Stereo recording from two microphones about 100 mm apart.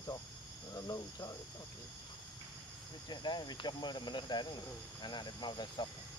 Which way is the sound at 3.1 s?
45° left (ahead or behind).